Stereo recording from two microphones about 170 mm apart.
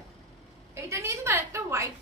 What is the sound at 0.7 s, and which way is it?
A woman's voice, 15° right (ahead or behind).